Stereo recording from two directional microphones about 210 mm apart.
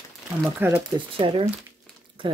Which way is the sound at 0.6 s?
10° right (ahead or behind).